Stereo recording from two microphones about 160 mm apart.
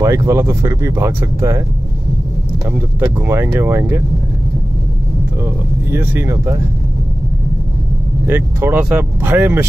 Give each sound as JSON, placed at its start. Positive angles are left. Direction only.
{"t": 0.0, "sound": "speech", "side_deg": -20}
{"t": 3.2, "sound": "speech", "side_deg": -15}
{"t": 5.4, "sound": "speech", "side_deg": -15}
{"t": 8.3, "sound": "speech", "side_deg": -15}